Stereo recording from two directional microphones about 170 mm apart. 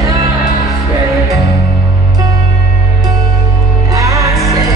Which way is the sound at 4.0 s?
20° right (ahead or behind).